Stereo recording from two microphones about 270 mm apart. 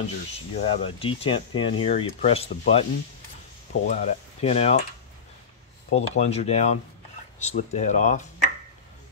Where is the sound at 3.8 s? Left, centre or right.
Left.